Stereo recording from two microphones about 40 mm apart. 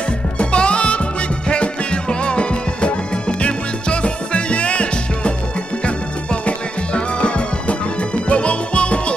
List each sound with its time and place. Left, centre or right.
0.4 s music: left
6.4 s music: left